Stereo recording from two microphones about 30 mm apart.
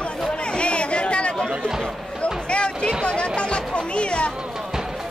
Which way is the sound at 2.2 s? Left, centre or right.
Left.